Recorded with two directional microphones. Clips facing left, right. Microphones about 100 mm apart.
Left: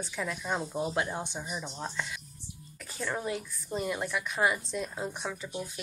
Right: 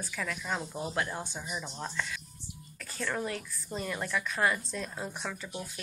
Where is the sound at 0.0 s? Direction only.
20° left (ahead or behind).